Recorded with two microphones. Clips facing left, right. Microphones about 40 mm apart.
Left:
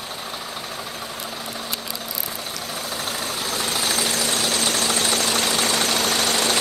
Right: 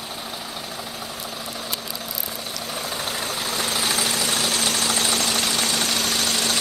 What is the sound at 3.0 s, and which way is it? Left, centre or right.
Vehicle, centre.